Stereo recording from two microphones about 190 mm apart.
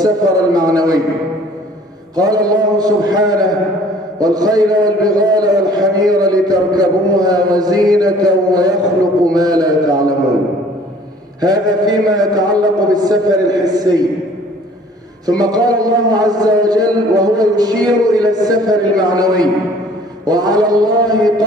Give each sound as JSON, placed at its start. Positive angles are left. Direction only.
{"t": 0.0, "sound": "a sound", "side_deg": -20}
{"t": 2.1, "sound": "a man's voice", "side_deg": -20}
{"t": 11.4, "sound": "a man's voice", "side_deg": -20}
{"t": 15.2, "sound": "a man's voice", "side_deg": -20}